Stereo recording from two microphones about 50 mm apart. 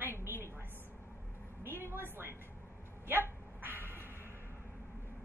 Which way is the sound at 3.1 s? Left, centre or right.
Right.